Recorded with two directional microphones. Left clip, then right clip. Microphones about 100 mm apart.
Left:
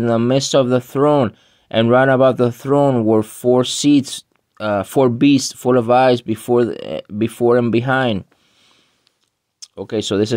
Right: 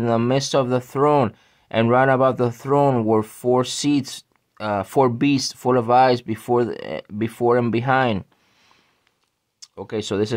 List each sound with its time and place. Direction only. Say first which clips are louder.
0.3 s speech: left 5 dB; 20° left (ahead or behind)
9.6 s speech: left 5 dB; 25° left (ahead or behind)